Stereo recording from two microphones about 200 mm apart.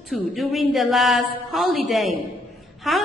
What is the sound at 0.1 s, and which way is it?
Speech, centre (ahead or behind).